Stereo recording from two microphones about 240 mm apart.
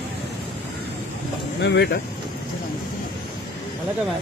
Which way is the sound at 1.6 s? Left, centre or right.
Left.